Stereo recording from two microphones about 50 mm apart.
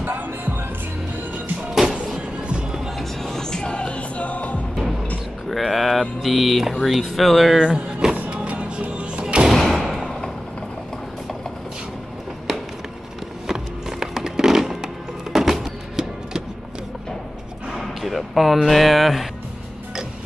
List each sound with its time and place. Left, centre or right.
0.0 s music: right
2.4 s music: centre
3.0 s music: centre; by 4.6 s left
5.5 s mantra: centre
7.5 s speech: centre
8.3 s music: right
9.5 s thump: centre
13.5 s music: centre
17.6 s a sound: centre